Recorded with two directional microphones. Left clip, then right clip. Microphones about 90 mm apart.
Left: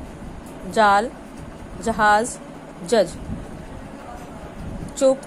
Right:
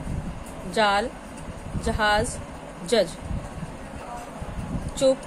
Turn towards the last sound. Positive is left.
turn(degrees=35)  # may be behind; listen again after turning